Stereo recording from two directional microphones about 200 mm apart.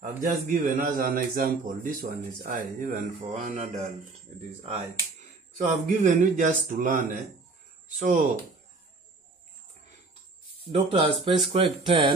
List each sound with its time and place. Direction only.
0.0 s a man's voice: 40° right (ahead or behind)
5.6 s a man's voice: 40° right (ahead or behind)
10.6 s speech: 30° right (ahead or behind)